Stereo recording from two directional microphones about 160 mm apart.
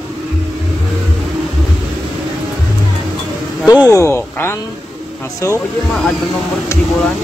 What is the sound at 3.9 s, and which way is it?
Speech, 15° left (ahead or behind).